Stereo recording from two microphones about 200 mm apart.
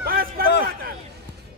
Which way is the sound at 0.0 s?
45° right (ahead or behind).